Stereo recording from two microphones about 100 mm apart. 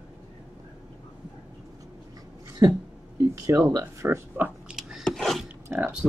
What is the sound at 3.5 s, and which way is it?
Speech, 30° right (ahead or behind).